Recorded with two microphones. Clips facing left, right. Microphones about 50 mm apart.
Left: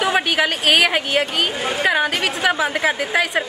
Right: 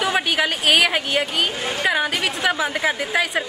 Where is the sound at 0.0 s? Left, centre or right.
Centre.